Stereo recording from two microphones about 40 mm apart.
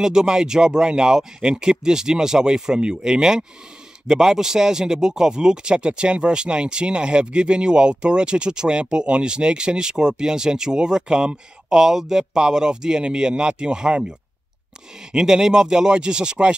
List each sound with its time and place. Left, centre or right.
0.0 s speech: centre
15.1 s speech: centre